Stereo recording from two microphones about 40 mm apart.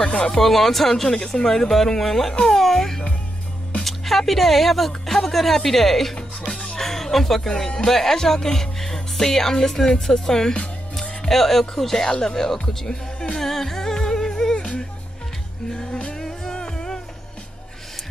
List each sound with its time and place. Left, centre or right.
0.0 s speech: left
0.4 s speech: centre
1.0 s speech: centre
6.5 s music: left
6.8 s speech: centre
12.6 s music: centre
13.4 s music: centre
14.6 s music: left